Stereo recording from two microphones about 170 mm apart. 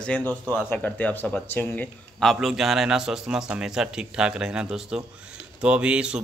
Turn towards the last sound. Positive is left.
turn(degrees=-5)  # may be behind; listen again after turning